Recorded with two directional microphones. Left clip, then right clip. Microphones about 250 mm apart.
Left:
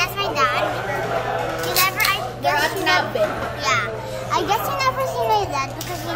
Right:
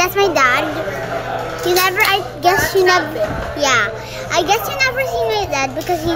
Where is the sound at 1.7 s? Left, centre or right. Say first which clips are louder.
Right 5 dB; centre.